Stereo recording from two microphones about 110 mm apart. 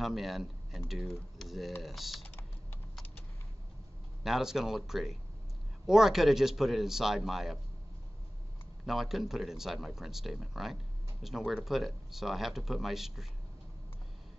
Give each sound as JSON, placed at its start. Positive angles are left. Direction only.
{"t": 0.0, "sound": "speech", "side_deg": 0}
{"t": 4.2, "sound": "speech", "side_deg": -5}
{"t": 8.8, "sound": "speech", "side_deg": 0}